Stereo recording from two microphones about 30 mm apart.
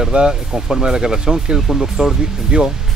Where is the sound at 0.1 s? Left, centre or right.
Right.